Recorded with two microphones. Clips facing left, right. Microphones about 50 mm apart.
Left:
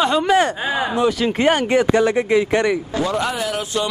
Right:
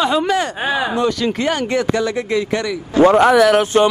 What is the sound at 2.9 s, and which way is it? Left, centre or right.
Speech, right.